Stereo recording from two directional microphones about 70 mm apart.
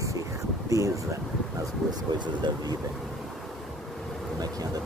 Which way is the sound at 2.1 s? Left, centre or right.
Right.